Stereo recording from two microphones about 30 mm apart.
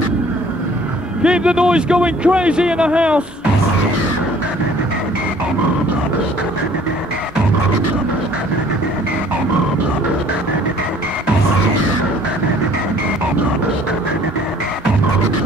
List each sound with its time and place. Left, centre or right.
1.2 s a man's voice: right